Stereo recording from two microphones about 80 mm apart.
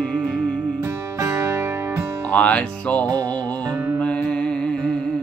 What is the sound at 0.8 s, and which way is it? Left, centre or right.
Music, right.